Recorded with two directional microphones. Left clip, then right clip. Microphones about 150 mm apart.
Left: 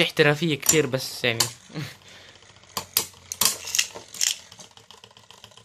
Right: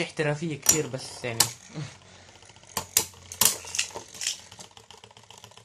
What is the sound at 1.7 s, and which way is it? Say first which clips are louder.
Speech: left 5 dB; 35° left (ahead or behind).